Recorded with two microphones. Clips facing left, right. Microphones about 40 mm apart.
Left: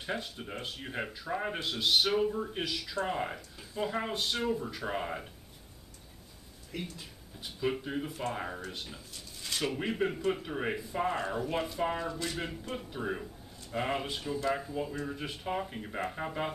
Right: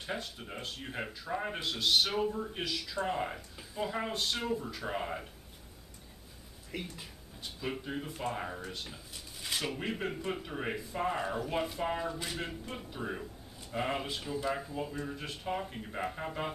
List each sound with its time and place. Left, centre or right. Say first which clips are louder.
0.0 s a man's voice: left 2 dB; centre
6.7 s speech: left 1 dB; centre
7.3 s a man's voice: left 5 dB; centre
9.1 s a sound: right 1 dB; centre
9.6 s a man's voice: left 5 dB; centre
12.4 s a man's voice: left 2 dB; centre